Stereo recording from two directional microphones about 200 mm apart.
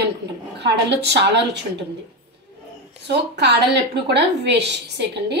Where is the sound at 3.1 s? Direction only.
55° right (ahead or behind).